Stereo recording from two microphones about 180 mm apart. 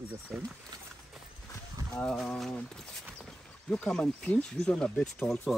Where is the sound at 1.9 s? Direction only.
5° left (ahead or behind).